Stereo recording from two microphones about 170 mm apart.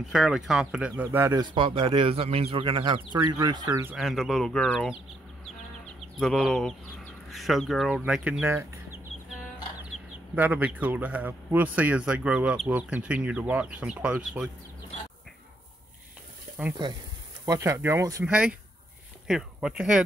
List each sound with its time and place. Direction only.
0.1 s speech: centre (ahead or behind); by 3.8 s 25° right (ahead or behind)
3.8 s speech: 5° right (ahead or behind)
6.1 s speech: centre (ahead or behind)
10.3 s speech: 10° right (ahead or behind)
17.5 s speech: 15° right (ahead or behind)
18.2 s speech: 5° right (ahead or behind)